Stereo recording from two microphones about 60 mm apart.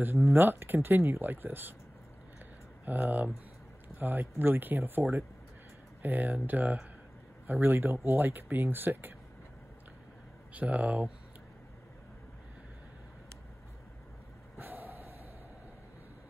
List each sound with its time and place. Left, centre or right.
0.0 s speech: right
2.8 s speech: right
6.0 s speech: right
10.5 s speech: right
14.6 s a sound: right